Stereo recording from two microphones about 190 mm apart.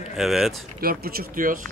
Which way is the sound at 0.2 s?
Centre (ahead or behind).